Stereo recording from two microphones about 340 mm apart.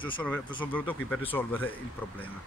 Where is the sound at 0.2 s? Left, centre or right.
Centre.